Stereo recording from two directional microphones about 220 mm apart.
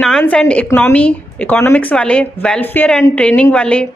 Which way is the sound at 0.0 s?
5° left (ahead or behind).